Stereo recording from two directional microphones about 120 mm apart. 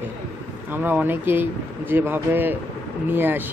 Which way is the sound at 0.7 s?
15° right (ahead or behind).